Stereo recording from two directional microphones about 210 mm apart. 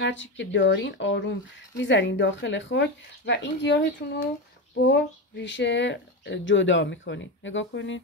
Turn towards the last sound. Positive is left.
turn(degrees=60)  # may be behind; listen again after turning